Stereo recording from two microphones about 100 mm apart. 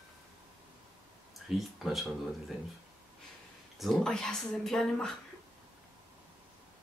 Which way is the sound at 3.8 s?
5° left (ahead or behind).